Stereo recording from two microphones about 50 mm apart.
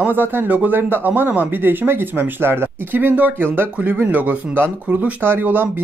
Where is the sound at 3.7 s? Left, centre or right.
Right.